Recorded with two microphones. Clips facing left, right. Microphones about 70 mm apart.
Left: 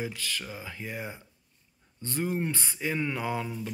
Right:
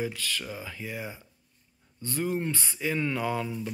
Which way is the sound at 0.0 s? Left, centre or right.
Left.